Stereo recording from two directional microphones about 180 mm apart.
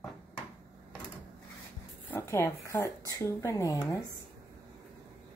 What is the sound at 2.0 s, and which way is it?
Speech, 15° left (ahead or behind).